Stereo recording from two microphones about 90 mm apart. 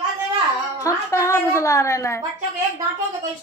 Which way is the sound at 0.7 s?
35° left (ahead or behind).